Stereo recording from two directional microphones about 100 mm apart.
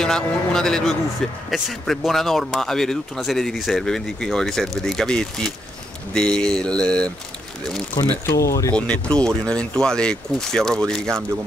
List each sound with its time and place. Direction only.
0.0 s speech: 5° left (ahead or behind)
8.0 s speech: 40° left (ahead or behind)
8.7 s speech: 10° left (ahead or behind)